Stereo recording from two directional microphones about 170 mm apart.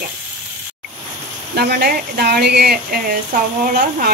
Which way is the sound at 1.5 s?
65° right (ahead or behind).